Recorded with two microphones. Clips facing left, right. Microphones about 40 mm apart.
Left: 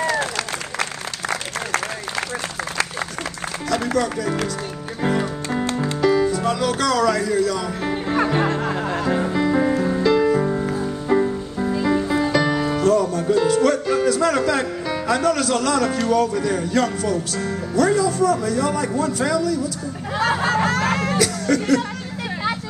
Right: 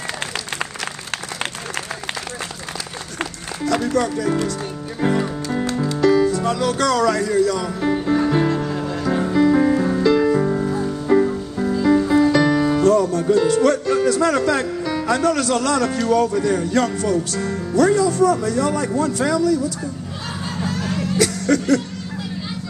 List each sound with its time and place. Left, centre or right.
4.0 s music: centre
5.7 s music: left
5.9 s speech: centre
8.3 s music: left
9.1 s music: centre
20.2 s a sound: left
21.2 s music: centre